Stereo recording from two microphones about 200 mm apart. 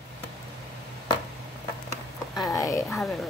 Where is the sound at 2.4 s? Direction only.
15° left (ahead or behind).